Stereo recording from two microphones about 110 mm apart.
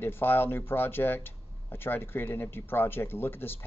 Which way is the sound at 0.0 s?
20° left (ahead or behind).